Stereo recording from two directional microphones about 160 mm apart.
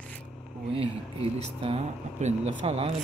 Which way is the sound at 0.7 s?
35° right (ahead or behind).